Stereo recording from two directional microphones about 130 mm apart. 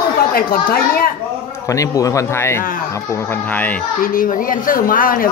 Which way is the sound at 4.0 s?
90° left.